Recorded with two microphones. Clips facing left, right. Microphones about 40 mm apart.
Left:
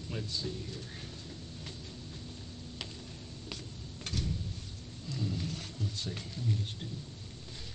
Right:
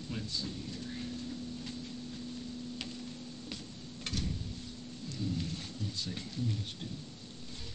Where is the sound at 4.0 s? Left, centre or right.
Right.